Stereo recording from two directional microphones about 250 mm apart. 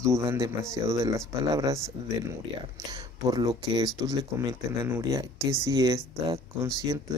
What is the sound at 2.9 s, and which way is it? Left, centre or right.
Speech, centre.